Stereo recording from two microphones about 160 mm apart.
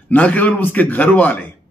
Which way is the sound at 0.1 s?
10° left (ahead or behind).